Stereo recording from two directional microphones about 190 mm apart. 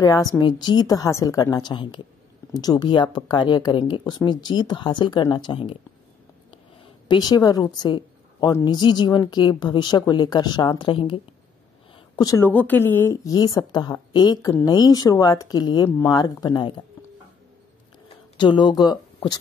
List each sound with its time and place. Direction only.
0.0 s a woman's voice: 20° left (ahead or behind)
7.1 s a woman's voice: 20° left (ahead or behind)
12.2 s a woman's voice: 15° left (ahead or behind)
18.0 s a sound: 25° left (ahead or behind)